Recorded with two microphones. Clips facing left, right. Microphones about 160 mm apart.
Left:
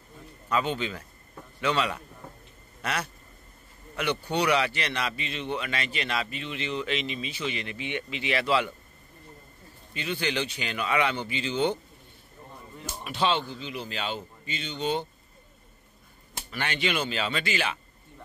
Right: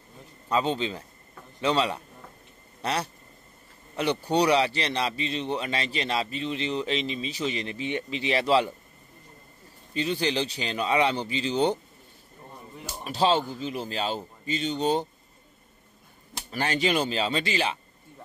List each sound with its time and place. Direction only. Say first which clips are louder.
0.5 s a man's voice: right 2 dB; 30° right (ahead or behind)
9.9 s speech: right 3 dB; 35° right (ahead or behind)
13.0 s speech: right 3 dB; 35° right (ahead or behind)
16.4 s speech: right 4 dB; 35° right (ahead or behind)